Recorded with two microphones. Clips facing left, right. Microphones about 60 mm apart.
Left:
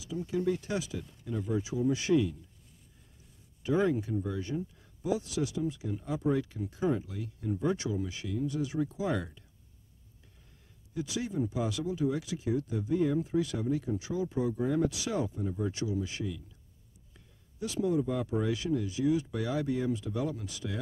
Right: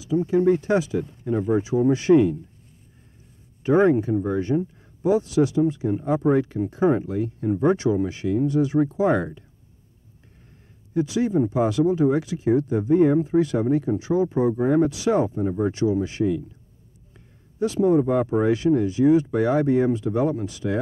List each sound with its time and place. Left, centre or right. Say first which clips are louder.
0.0 s speech: right 12 dB; right
3.6 s speech: right 11 dB; right
11.0 s speech: right 12 dB; right
17.6 s speech: right 11 dB; right